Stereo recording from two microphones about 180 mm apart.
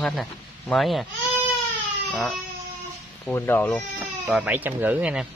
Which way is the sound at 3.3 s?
10° left (ahead or behind).